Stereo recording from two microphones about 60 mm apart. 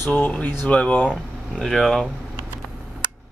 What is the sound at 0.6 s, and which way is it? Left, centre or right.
Speech, left.